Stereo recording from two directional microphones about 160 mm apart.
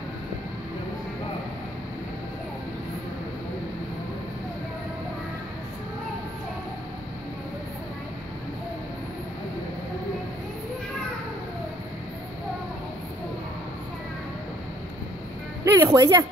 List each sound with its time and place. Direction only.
15.6 s speech: 20° right (ahead or behind)